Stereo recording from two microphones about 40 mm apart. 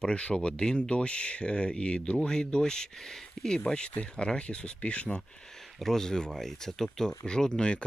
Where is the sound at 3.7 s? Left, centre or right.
Left.